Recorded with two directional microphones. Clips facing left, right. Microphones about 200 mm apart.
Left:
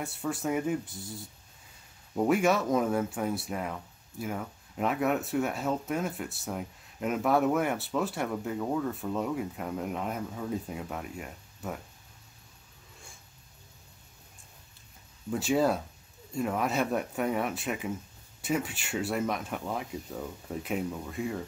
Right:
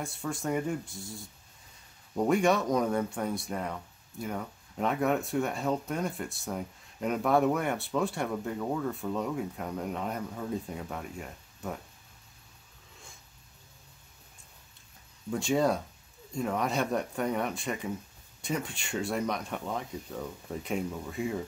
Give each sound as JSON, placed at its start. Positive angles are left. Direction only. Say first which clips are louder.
{"t": 0.0, "sound": "speech", "louder": "left 2 dB", "side_deg": 5}
{"t": 15.3, "sound": "speech", "louder": "left 1 dB", "side_deg": 5}